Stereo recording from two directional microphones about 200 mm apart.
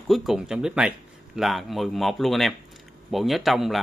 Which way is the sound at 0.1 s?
Centre (ahead or behind).